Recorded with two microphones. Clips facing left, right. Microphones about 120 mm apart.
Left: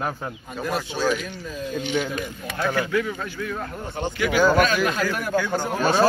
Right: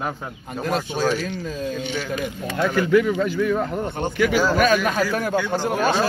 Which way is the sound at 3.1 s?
80° right.